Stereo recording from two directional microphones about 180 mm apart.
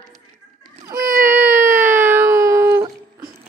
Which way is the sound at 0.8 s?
15° right (ahead or behind).